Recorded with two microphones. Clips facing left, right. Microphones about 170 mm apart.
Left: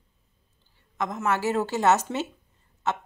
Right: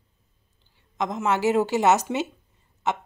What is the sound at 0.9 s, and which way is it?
Speech, 20° right (ahead or behind).